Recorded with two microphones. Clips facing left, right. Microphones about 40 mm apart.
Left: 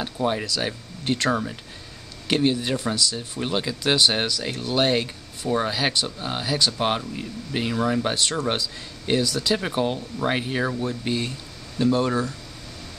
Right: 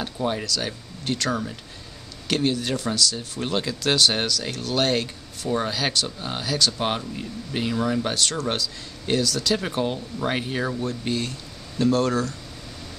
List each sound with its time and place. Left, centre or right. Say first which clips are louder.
0.0 s speech: left 2 dB; centre